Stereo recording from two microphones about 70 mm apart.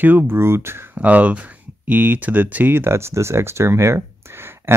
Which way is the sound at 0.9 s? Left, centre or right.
Right.